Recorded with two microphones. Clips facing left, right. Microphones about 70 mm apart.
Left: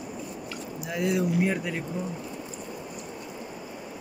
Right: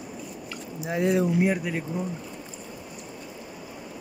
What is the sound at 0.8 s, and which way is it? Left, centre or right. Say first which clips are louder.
Speech: right 3 dB; right.